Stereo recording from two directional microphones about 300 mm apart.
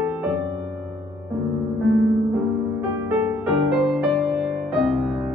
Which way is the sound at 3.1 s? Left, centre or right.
Centre.